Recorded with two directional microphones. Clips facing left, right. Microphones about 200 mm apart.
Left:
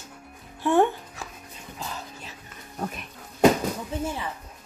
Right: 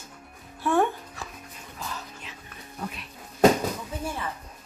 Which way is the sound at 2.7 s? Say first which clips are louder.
Left 4 dB; 45° left (ahead or behind).